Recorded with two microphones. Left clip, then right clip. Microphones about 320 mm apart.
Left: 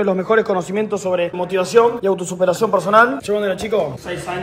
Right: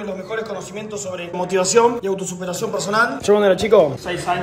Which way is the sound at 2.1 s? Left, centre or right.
Centre.